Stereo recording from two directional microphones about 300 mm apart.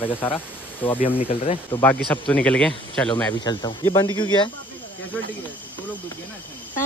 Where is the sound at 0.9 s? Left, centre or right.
Left.